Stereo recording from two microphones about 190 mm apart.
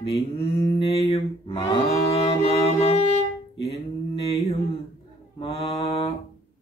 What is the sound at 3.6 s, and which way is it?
Mantra, 30° left (ahead or behind).